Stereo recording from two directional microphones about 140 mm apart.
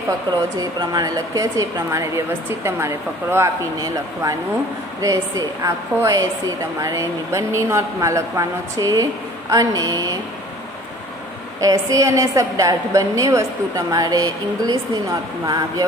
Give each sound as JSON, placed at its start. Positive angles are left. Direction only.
{"t": 0.6, "sound": "a woman's voice", "side_deg": -30}
{"t": 11.6, "sound": "a woman's voice", "side_deg": -25}